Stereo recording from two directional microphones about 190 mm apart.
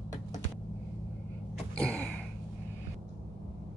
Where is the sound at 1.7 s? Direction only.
5° left (ahead or behind).